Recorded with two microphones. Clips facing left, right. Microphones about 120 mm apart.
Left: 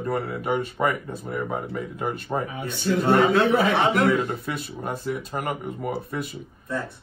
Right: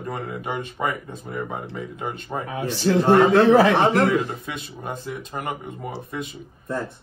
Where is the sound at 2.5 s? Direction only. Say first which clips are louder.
Right 5 dB; 90° right.